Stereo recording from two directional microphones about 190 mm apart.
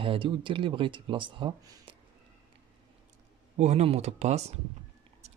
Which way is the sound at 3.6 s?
35° right (ahead or behind).